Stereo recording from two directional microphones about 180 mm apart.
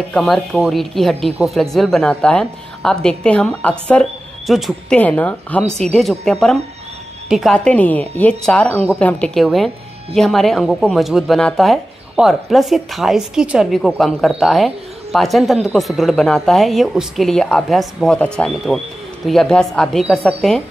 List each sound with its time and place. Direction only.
0.1 s speech: centre (ahead or behind)